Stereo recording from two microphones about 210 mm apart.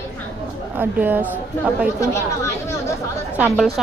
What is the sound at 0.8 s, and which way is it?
Speech, 10° right (ahead or behind).